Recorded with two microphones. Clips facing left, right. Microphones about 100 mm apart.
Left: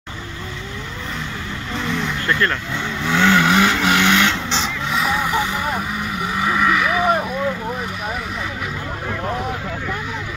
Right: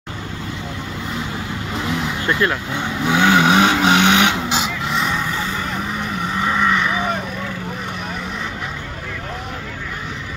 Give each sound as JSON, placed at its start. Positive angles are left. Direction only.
{"t": 1.8, "sound": "vehicle", "side_deg": -5}
{"t": 2.2, "sound": "vehicle", "side_deg": -15}
{"t": 5.3, "sound": "vehicle", "side_deg": 15}